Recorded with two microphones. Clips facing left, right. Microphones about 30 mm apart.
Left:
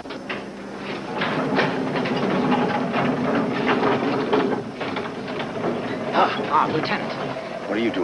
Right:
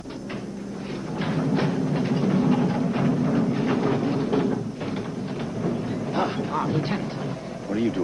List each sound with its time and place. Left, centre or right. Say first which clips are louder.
1.1 s music: left 3 dB; left
5.6 s train: left 2 dB; left
7.7 s a sound: left 2 dB; left